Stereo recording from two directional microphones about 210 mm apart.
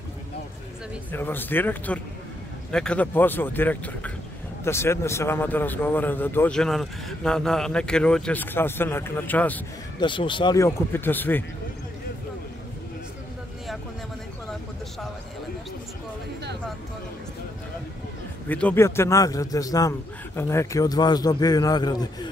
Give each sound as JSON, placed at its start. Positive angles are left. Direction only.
{"t": 1.1, "sound": "speech", "side_deg": 10}
{"t": 9.9, "sound": "speech", "side_deg": 25}
{"t": 18.5, "sound": "speech", "side_deg": 5}